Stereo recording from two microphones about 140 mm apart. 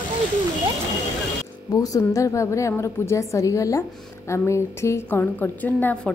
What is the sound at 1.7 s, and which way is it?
A woman's voice, 25° left (ahead or behind).